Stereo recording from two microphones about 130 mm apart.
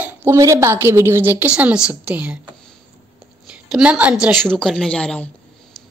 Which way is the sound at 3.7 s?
10° right (ahead or behind).